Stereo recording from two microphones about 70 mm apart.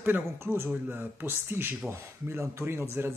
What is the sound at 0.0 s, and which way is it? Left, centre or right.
Speech, right.